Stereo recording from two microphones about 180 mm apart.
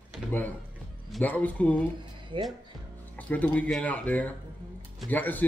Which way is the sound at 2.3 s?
30° right (ahead or behind).